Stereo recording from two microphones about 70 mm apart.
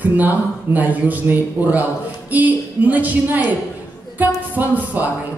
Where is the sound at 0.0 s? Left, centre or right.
Right.